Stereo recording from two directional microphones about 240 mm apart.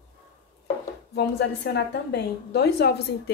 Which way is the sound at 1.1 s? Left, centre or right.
Left.